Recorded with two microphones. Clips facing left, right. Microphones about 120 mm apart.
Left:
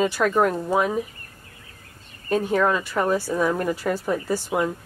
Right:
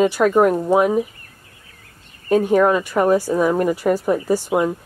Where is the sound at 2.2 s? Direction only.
10° right (ahead or behind).